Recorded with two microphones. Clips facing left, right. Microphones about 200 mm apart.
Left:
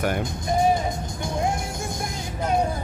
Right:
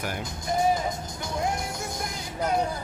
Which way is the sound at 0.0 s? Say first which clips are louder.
Left 8 dB; 60° left (ahead or behind).